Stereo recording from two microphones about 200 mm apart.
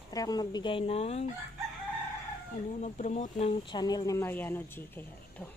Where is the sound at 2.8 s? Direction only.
35° left (ahead or behind); by 5.4 s 10° left (ahead or behind).